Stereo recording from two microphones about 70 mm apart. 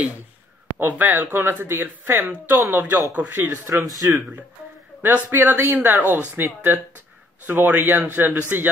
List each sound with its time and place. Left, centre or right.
0.7 s speech: right
5.0 s speech: right